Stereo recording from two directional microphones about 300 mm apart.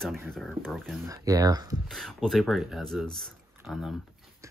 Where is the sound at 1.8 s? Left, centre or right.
Centre.